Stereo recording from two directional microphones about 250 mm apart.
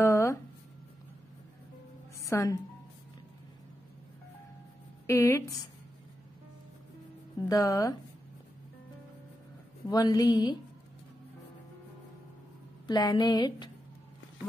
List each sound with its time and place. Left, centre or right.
0.0 s a sound: centre
2.2 s speech: centre
5.0 s speech: centre
7.4 s speech: centre
9.8 s speech: centre
12.8 s speech: centre